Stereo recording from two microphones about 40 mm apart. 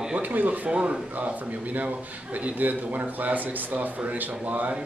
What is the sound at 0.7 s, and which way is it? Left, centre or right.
Speech, right.